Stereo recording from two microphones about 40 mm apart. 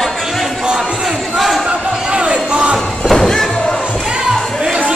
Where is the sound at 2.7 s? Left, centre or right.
Centre.